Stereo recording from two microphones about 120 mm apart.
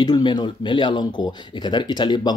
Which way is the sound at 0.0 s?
40° left (ahead or behind).